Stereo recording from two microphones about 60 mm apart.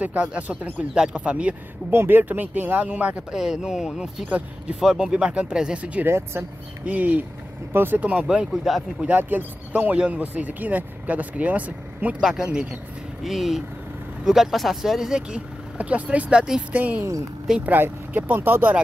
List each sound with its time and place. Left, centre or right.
0.0 s speech: right
1.9 s speech: right
3.3 s speech: centre
6.0 s speech: right
6.8 s speech: right
7.7 s speech: right
8.0 s speech: centre
8.7 s speech: centre
9.0 s speech: right
12.2 s speech: centre
16.7 s speech: right